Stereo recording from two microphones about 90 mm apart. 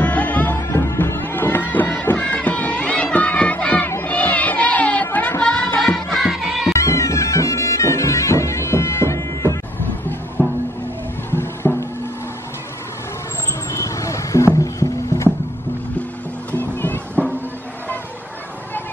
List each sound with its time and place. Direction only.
0.0 s music: 15° left (ahead or behind)
0.6 s music: 30° left (ahead or behind)
6.2 s music: 5° right (ahead or behind)
6.7 s bagpipes: 35° left (ahead or behind)
10.4 s music: 20° left (ahead or behind)
13.7 s music: 35° left (ahead or behind)
16.5 s boat: 25° left (ahead or behind)